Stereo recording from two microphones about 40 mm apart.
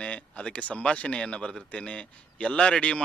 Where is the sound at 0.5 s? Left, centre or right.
Left.